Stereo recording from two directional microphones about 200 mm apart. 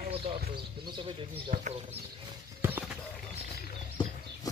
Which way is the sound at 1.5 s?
45° right (ahead or behind).